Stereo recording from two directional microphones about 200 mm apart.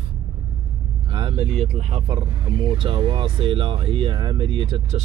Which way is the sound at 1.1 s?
30° right (ahead or behind).